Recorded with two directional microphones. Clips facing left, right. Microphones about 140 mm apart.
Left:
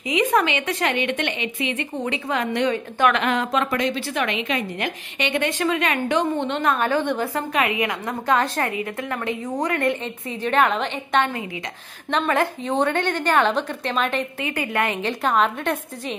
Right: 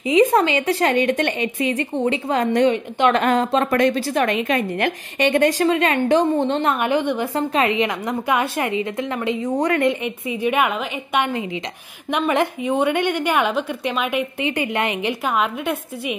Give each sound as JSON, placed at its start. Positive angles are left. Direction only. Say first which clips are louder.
{"t": 0.1, "sound": "a woman's voice", "louder": "right 5 dB", "side_deg": -35}
{"t": 3.7, "sound": "a woman's voice", "louder": "right 6 dB", "side_deg": -50}
{"t": 7.3, "sound": "a woman's voice", "louder": "right 4 dB", "side_deg": -30}
{"t": 14.4, "sound": "a woman's voice", "louder": "right 1 dB", "side_deg": -20}